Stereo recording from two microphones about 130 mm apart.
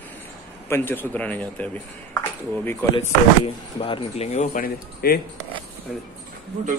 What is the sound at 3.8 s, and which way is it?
Speech, 45° left (ahead or behind).